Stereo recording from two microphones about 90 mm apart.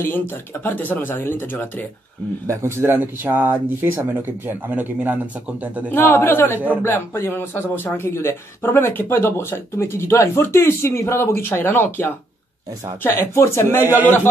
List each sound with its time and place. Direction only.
0.7 s speech: 20° left (ahead or behind)
2.4 s speech: 30° right (ahead or behind)
5.9 s speech: 25° left (ahead or behind)